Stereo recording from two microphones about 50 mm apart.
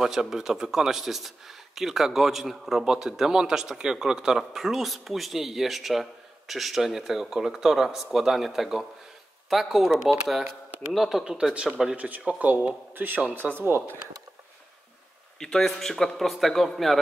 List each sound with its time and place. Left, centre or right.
0.0 s a man's voice: centre
12.0 s speech: right
12.9 s speech: right
15.3 s a man's voice: centre